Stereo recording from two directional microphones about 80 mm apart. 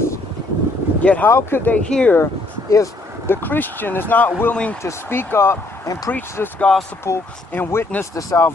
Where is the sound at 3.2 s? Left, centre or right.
Left.